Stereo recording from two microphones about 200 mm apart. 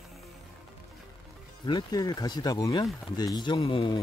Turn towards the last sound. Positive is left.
turn(degrees=25)  # may be behind; listen again after turning